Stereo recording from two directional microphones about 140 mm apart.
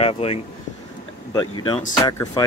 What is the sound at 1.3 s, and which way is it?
Speech, 30° left (ahead or behind).